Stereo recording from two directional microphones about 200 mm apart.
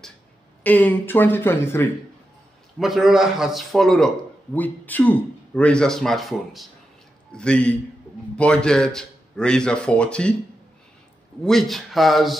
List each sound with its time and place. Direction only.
0.7 s speech: 10° left (ahead or behind)
2.8 s a man's voice: centre (ahead or behind)
11.4 s a man's voice: centre (ahead or behind)